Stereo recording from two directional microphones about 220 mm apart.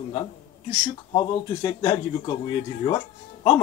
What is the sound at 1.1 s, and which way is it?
Speech, 20° left (ahead or behind).